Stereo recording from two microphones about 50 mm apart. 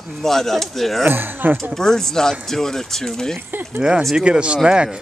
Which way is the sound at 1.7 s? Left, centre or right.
Centre.